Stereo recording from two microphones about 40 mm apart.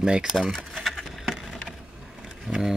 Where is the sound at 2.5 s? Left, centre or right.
Centre.